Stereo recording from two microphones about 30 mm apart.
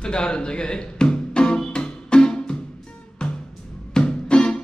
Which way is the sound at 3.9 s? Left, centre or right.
Left.